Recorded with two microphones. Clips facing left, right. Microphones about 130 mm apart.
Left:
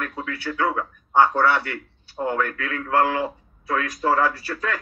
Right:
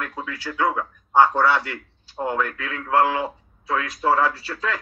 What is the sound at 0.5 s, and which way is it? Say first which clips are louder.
Speech: right 1 dB; 20° right (ahead or behind).